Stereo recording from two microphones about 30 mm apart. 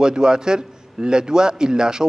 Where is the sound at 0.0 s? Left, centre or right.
Right.